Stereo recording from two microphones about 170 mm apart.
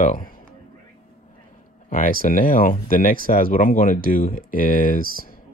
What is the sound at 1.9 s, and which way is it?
Speech, 50° left (ahead or behind).